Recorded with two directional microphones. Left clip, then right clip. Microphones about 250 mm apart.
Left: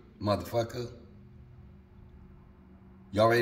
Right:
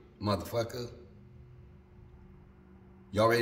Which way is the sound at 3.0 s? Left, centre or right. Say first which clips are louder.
Left 2 dB; centre.